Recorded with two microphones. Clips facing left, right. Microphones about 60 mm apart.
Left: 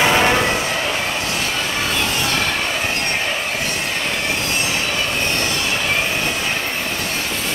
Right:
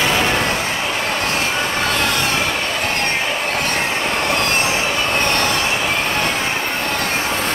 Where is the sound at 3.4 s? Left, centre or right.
Right.